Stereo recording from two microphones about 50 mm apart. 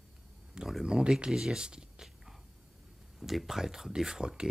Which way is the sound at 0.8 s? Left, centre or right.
Centre.